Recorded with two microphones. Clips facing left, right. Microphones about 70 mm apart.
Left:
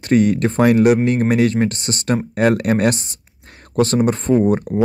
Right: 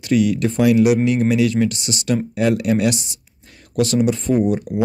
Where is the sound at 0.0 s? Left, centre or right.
Left.